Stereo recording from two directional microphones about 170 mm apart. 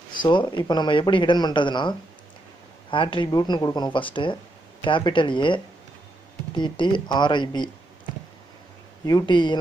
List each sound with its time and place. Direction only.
0.1 s speech: 30° left (ahead or behind)
9.0 s speech: 25° left (ahead or behind)